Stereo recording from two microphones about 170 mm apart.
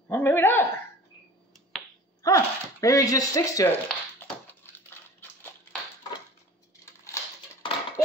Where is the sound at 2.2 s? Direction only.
20° left (ahead or behind).